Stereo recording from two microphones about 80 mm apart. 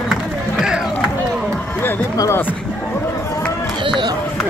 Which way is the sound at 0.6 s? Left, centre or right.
Centre.